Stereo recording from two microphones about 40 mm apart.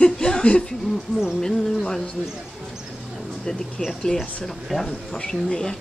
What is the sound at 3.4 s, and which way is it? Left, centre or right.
Speech, centre.